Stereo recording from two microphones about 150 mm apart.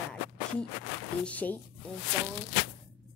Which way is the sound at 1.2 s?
10° left (ahead or behind).